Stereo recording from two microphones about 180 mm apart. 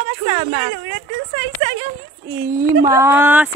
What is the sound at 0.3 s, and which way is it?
Speech, 35° right (ahead or behind).